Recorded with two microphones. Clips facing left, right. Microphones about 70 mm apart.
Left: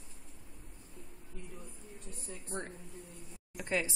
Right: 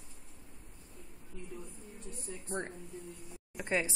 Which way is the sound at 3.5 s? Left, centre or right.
Right.